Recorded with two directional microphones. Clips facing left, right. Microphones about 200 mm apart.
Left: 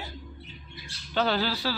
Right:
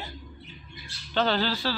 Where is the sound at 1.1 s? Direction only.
10° left (ahead or behind).